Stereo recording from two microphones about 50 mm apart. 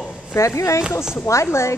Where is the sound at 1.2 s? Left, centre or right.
Left.